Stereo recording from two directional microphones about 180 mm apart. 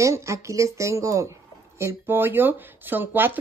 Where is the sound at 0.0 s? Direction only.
15° right (ahead or behind).